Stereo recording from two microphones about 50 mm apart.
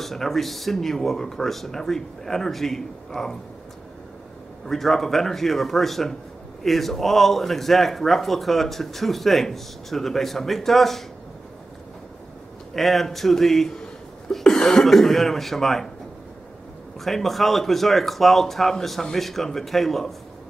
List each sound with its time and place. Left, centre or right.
0.0 s speech: centre
4.6 s speech: centre
12.7 s speech: centre
17.0 s speech: centre